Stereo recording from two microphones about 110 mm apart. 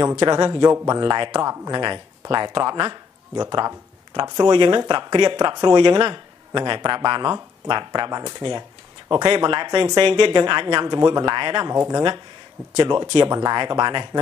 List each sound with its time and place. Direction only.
0.0 s speech: 35° right (ahead or behind)
1.0 s speech: 40° right (ahead or behind)
1.4 s speech: 30° right (ahead or behind)
1.8 s speech: 45° right (ahead or behind)